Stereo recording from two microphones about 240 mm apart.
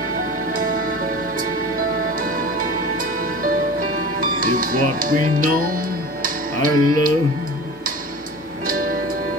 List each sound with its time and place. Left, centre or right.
2.2 s music: right
4.2 s speech: right
6.2 s music: right
8.6 s music: right